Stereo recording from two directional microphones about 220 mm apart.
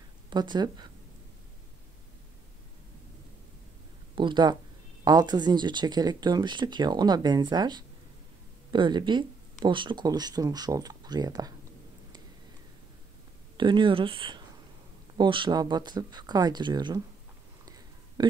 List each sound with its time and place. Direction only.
0.3 s speech: 20° right (ahead or behind)
4.1 s speech: 20° right (ahead or behind)
13.6 s speech: 20° right (ahead or behind)